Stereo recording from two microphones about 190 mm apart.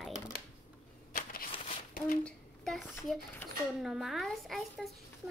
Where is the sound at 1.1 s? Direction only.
50° left (ahead or behind).